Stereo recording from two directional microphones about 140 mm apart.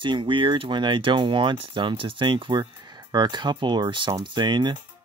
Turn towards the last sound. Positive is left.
turn(degrees=-35)  # may be behind; listen again after turning